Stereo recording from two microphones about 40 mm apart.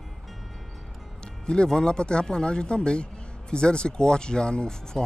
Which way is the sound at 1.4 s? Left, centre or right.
Centre.